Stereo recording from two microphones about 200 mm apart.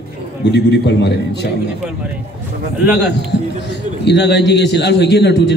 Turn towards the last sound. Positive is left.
turn(degrees=60)  # may be behind; listen again after turning